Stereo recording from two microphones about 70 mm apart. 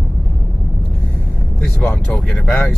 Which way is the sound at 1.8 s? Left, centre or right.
Centre.